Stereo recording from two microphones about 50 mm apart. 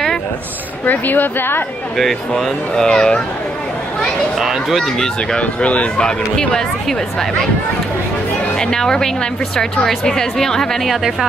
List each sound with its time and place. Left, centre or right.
0.8 s speech: left
2.0 s speech: centre
4.0 s speech: centre
5.4 s speech: left
8.5 s speech: centre
10.9 s speech: centre